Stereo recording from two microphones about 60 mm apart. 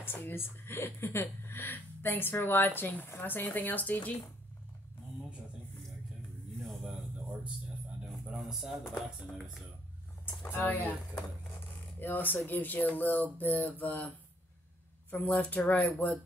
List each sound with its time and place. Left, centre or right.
0.0 s a woman's voice: left
8.5 s speech: centre
10.2 s a woman's voice: left